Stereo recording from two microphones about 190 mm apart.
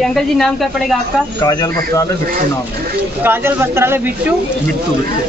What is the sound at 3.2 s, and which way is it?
Speech, 10° right (ahead or behind).